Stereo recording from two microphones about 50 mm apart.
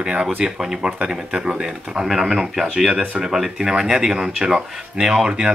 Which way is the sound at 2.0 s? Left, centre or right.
Centre.